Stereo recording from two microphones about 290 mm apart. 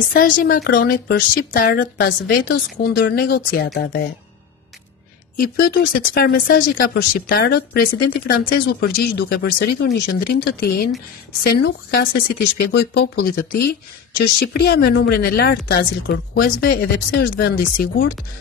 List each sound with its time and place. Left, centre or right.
0.1 s speech: left
5.4 s speech: left